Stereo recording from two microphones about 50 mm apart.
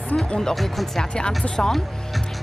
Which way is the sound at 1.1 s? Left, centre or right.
Centre.